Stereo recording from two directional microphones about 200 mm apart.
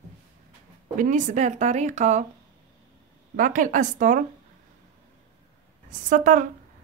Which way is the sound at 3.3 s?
40° right (ahead or behind).